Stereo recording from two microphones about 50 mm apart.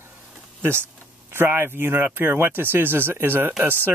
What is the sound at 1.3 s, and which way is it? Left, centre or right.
Speech, right.